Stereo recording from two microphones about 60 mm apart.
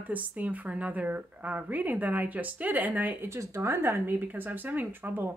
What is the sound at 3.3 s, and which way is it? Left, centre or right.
Speech, right.